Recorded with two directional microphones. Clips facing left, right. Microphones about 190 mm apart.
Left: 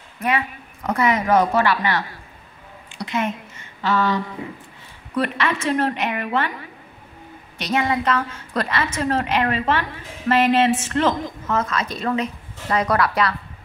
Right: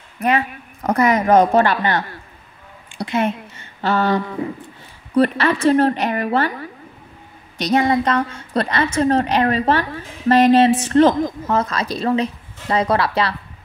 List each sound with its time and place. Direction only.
0.2 s a woman's voice: 40° right (ahead or behind)
3.0 s a woman's voice: 35° right (ahead or behind)
7.5 s a woman's voice: 35° right (ahead or behind)